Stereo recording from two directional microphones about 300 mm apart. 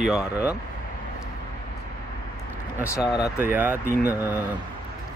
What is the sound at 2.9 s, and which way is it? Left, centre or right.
Speech, centre.